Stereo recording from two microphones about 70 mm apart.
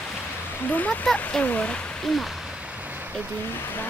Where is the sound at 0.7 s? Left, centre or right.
Left.